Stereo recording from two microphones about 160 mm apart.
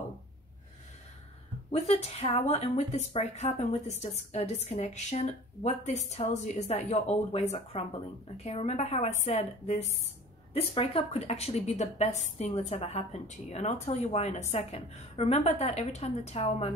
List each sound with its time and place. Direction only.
1.7 s speech: 40° left (ahead or behind)